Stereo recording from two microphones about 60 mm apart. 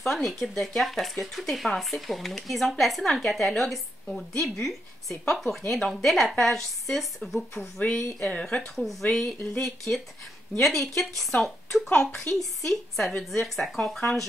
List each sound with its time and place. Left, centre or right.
0.0 s speech: centre
8.2 s a woman's voice: centre
8.7 s a woman's voice: centre